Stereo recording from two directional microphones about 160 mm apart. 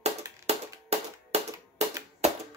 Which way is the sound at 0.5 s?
40° right (ahead or behind).